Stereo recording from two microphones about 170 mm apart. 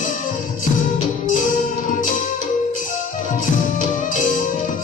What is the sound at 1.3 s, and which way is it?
Music, 50° left (ahead or behind).